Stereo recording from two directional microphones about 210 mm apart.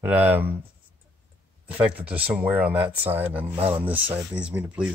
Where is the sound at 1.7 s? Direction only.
5° right (ahead or behind).